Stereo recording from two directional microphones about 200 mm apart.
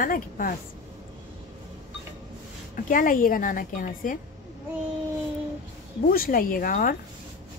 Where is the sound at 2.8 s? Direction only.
45° left (ahead or behind).